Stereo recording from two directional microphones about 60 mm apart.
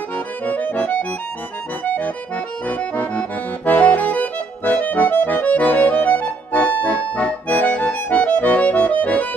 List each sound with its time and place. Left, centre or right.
0.5 s accordion: left